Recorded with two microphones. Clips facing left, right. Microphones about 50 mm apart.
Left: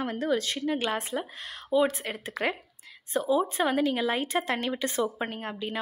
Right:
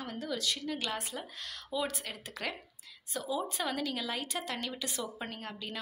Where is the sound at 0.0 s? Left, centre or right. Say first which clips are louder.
Left 9 dB; left.